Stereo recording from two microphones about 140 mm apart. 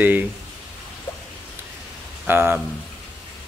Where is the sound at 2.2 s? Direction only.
15° right (ahead or behind).